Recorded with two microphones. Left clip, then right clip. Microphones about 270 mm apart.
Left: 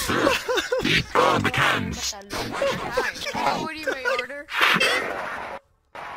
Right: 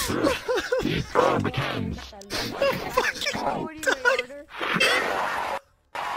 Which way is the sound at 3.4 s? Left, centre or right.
Left.